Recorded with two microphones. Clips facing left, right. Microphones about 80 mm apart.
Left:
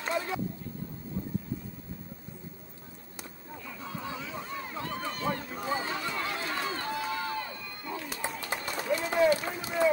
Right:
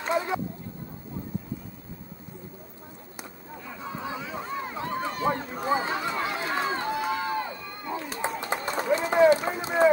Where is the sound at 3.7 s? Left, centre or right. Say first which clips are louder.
Right 4 dB; right.